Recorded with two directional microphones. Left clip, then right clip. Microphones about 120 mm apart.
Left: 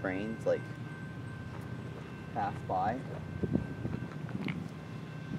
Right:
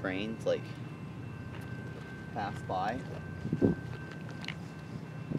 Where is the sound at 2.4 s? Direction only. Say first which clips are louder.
Left 2 dB; 20° right (ahead or behind).